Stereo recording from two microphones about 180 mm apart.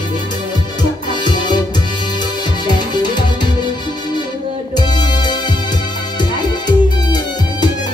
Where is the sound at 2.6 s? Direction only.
25° left (ahead or behind).